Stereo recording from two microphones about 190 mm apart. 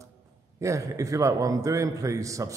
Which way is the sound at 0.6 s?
15° right (ahead or behind).